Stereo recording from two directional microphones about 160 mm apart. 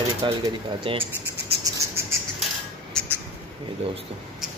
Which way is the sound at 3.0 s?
5° left (ahead or behind).